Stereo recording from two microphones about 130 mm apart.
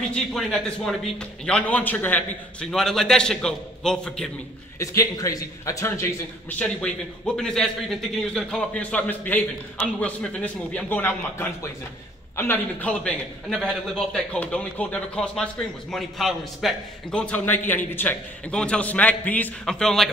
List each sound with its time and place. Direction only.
0.3 s a man's voice: 5° left (ahead or behind)
4.7 s a man's voice: 25° left (ahead or behind)
6.6 s a man's voice: 5° left (ahead or behind)